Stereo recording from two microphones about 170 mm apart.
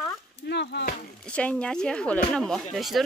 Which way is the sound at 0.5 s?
80° left.